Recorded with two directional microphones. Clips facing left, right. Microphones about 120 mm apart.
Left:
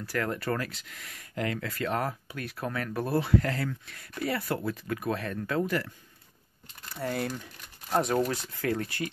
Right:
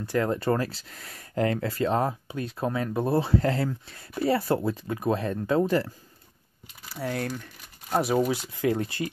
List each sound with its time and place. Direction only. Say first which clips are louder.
0.0 s speech: right 6 dB; 25° right (ahead or behind)
6.9 s speech: right 1 dB; centre (ahead or behind); by 9.1 s 25° right (ahead or behind)